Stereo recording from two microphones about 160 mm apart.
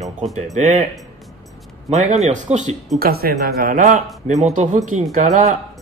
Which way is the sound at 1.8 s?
45° right (ahead or behind).